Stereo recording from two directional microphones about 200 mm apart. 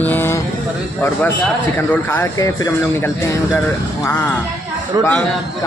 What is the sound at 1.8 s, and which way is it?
Speech, 15° left (ahead or behind).